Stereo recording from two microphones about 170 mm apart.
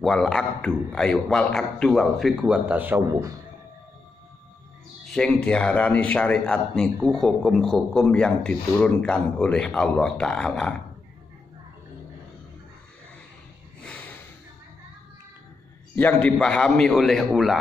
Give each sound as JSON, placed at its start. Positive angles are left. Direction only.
{"t": 0.0, "sound": "a man's voice", "side_deg": 5}
{"t": 5.0, "sound": "a man's voice", "side_deg": 5}
{"t": 13.8, "sound": "snort", "side_deg": 10}
{"t": 16.0, "sound": "a man's voice", "side_deg": 10}